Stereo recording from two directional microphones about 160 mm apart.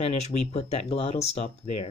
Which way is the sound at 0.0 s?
45° left (ahead or behind).